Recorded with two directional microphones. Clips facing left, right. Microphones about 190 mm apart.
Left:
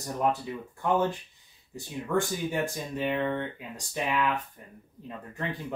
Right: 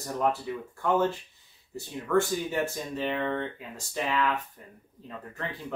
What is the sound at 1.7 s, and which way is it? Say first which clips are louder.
Speech: right 3 dB; 15° left (ahead or behind).